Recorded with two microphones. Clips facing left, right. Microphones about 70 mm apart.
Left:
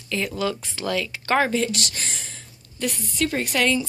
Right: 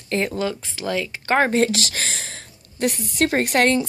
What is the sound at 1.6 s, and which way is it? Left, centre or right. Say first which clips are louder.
Speech: right 4 dB; right.